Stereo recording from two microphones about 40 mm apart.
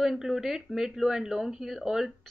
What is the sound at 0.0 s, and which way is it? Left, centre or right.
Speech, centre.